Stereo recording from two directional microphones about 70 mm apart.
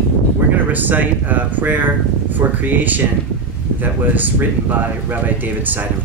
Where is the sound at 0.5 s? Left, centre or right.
Right.